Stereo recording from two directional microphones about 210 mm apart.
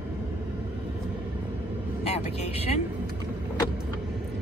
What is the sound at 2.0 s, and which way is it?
Speech, 30° left (ahead or behind).